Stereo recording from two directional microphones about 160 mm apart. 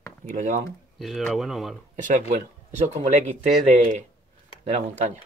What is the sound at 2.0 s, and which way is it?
Speech, 55° right (ahead or behind).